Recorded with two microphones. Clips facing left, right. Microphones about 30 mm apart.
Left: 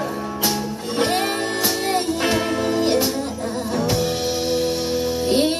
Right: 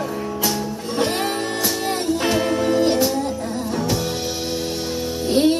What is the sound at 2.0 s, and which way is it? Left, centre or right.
Music, centre.